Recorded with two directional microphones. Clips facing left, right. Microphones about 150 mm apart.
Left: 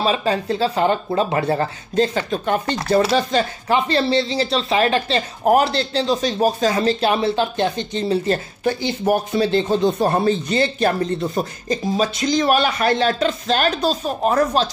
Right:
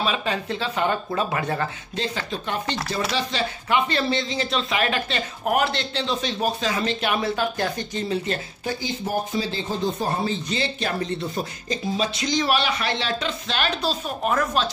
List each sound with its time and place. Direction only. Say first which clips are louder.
0.0 s speech: left 6 dB; 35° left (ahead or behind)
2.1 s speech: left 8 dB; 50° left (ahead or behind); by 8.2 s 25° left (ahead or behind)
8.6 s speech: left 9 dB; 70° left (ahead or behind); by 14.7 s 35° left (ahead or behind)